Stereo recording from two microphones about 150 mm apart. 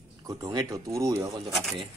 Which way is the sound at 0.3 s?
25° right (ahead or behind).